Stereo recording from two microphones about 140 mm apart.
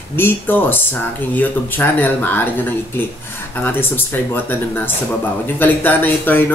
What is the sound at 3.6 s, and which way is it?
Speech, 15° left (ahead or behind).